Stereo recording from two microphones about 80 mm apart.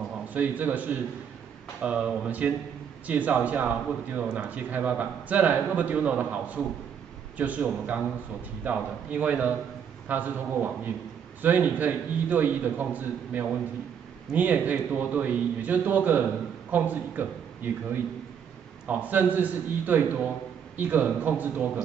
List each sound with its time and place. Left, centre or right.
0.3 s a man's voice: right
18.9 s a man's voice: right